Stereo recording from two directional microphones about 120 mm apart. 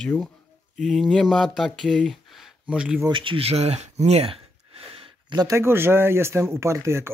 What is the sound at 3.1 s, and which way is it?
Speech, 45° right (ahead or behind).